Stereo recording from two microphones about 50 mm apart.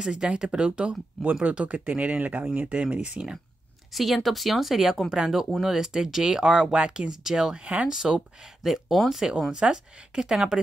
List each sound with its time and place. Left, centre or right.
0.0 s speech: centre
3.9 s speech: centre
7.6 s speech: right
7.9 s speech: centre
9.5 s speech: centre